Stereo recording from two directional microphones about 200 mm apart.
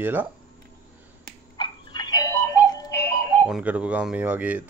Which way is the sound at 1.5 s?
20° left (ahead or behind).